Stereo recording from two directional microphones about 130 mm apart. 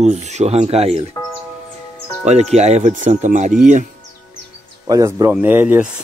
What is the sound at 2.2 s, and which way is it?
Speech, 60° right (ahead or behind).